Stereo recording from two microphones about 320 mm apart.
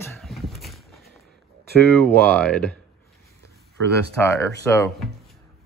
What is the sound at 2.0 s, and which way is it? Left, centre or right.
Speech, centre.